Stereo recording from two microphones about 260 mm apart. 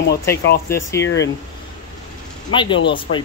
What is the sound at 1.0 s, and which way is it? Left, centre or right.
Speech, left.